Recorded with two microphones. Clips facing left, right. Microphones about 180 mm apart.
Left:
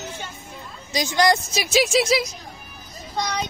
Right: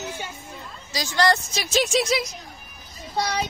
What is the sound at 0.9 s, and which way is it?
Speech, 20° left (ahead or behind).